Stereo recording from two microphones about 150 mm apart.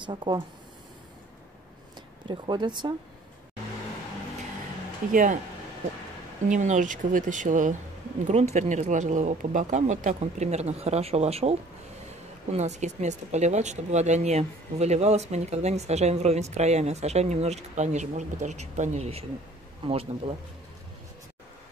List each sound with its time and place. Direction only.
0.0 s speech: 30° right (ahead or behind)
2.2 s speech: 30° right (ahead or behind)
5.1 s speech: 60° right (ahead or behind)
6.5 s speech: 55° right (ahead or behind)
12.5 s speech: 50° right (ahead or behind)